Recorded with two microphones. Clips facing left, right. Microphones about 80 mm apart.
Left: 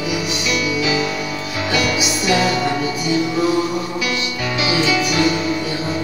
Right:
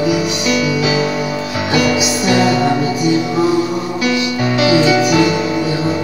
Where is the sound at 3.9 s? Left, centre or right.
Right.